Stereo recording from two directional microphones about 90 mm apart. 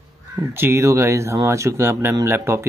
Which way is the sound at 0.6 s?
30° right (ahead or behind).